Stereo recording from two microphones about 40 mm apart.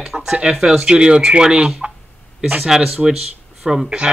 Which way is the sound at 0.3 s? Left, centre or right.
Centre.